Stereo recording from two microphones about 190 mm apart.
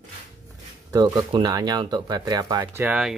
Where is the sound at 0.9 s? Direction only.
20° right (ahead or behind).